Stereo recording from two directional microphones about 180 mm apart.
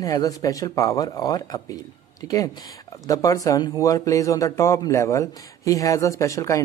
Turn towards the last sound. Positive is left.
turn(degrees=15)  # may be behind; listen again after turning